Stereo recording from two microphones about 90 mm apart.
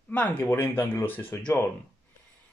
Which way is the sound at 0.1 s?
15° left (ahead or behind).